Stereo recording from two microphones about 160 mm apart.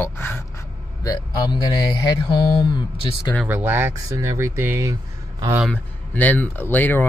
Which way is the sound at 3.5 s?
10° right (ahead or behind).